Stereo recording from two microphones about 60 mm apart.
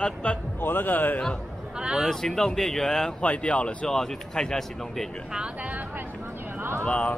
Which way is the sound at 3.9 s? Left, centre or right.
Centre.